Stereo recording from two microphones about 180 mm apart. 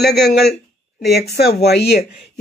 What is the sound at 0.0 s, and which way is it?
Speech, 65° left (ahead or behind).